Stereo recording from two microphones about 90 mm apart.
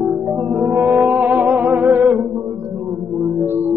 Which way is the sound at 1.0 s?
15° right (ahead or behind).